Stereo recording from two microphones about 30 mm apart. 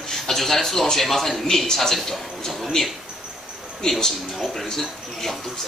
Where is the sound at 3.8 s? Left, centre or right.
Centre.